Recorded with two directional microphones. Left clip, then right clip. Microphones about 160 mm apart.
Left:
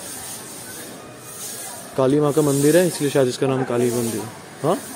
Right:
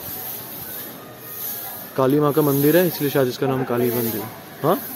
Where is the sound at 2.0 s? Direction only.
Centre (ahead or behind).